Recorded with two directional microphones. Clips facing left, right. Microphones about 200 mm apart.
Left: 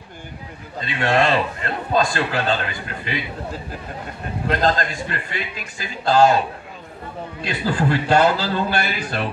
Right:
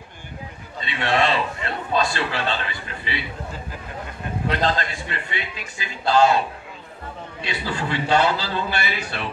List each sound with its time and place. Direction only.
0.7 s a man's voice: 45° left (ahead or behind)
4.5 s a man's voice: 45° left (ahead or behind)
7.4 s a man's voice: 45° left (ahead or behind)